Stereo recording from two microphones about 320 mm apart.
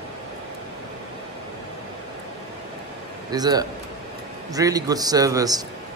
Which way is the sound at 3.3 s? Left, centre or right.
Centre.